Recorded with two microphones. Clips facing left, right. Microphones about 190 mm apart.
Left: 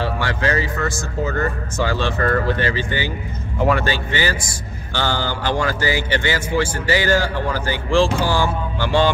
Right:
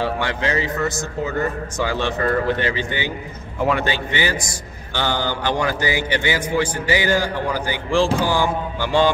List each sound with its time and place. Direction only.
0.0 s music: 20° right (ahead or behind)
0.8 s a man's voice: 15° right (ahead or behind)